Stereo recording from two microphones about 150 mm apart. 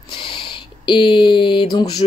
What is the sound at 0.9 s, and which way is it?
Speech, 35° left (ahead or behind).